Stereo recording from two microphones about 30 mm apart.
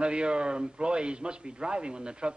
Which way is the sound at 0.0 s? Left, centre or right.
Right.